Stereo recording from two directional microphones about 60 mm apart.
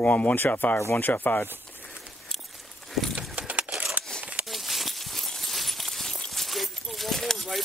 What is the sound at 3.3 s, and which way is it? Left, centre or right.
Keys jangling, right.